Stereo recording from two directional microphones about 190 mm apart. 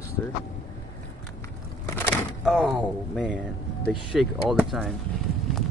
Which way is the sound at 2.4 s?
Centre (ahead or behind).